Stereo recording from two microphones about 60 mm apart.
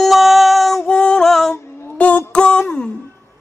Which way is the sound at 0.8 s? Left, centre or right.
Centre.